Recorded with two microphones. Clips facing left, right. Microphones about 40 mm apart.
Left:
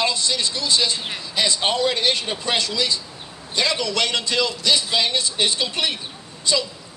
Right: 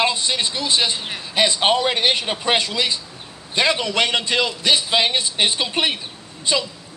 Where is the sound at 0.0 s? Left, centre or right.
Right.